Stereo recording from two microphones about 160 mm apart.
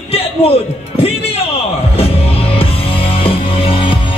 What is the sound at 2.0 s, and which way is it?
Music, 35° left (ahead or behind).